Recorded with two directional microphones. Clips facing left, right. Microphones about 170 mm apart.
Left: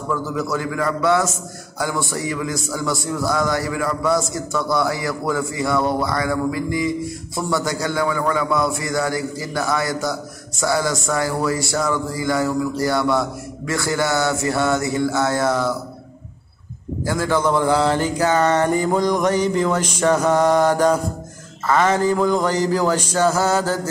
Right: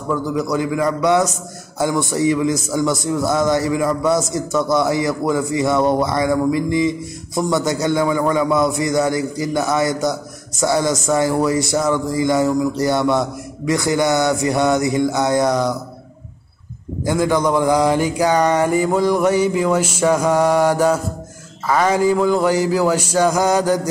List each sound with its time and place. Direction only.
0.1 s mantra: 15° right (ahead or behind)
1.8 s a man's voice: 20° right (ahead or behind)
17.0 s mantra: 15° right (ahead or behind)